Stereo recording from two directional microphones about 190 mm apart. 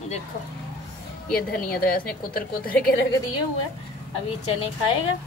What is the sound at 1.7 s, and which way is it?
A woman's voice, 55° left (ahead or behind).